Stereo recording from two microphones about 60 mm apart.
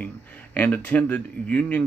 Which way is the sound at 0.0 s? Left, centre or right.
Left.